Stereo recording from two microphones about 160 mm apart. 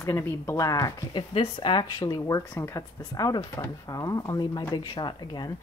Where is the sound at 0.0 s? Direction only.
15° left (ahead or behind).